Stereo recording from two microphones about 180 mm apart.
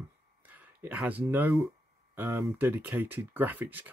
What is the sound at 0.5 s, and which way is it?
Speech, 10° right (ahead or behind).